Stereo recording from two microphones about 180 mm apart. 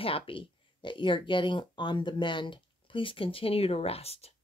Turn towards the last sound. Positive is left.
turn(degrees=35)  # may be behind; listen again after turning